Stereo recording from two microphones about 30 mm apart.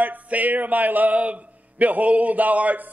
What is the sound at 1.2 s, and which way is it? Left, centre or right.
A man's voice, right.